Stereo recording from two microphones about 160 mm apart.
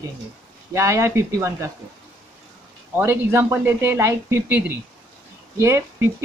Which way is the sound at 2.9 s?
15° right (ahead or behind).